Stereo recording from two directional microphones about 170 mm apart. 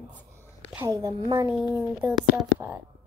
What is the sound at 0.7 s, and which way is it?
Speech, 20° right (ahead or behind).